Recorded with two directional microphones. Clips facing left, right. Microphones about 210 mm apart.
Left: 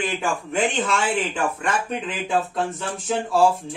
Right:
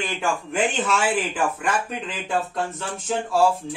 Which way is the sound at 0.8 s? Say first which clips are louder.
Even; 5° right (ahead or behind).